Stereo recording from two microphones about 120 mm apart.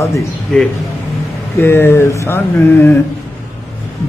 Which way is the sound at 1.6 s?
20° left (ahead or behind).